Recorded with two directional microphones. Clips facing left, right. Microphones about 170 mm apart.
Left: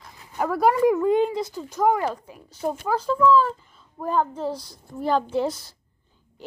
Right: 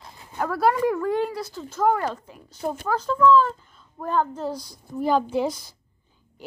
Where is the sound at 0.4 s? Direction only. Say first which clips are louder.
Left 2 dB; 15° left (ahead or behind).